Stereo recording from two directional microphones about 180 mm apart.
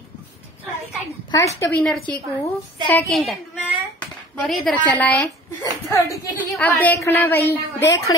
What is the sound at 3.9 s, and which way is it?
A woman's voice, centre (ahead or behind).